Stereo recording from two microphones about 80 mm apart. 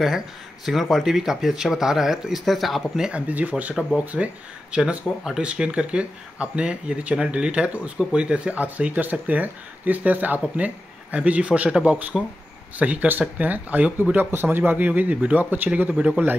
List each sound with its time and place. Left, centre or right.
0.7 s speech: centre
3.1 s a man's voice: centre